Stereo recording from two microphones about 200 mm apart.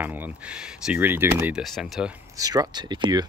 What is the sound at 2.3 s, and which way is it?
Speech, 20° right (ahead or behind).